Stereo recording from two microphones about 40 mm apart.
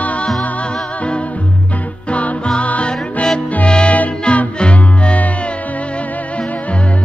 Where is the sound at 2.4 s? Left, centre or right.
Left.